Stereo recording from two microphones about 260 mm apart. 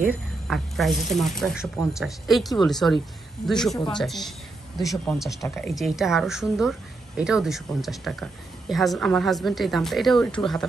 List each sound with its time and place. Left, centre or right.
0.0 s a woman's voice: centre
3.7 s speech: centre
4.0 s a woman's voice: centre